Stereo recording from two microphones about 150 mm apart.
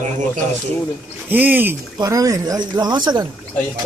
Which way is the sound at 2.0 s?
25° right (ahead or behind).